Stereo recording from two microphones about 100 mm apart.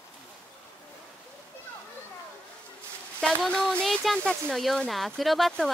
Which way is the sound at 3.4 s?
5° left (ahead or behind).